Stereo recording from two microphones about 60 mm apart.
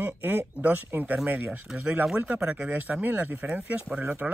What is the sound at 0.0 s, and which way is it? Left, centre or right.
Speech, right.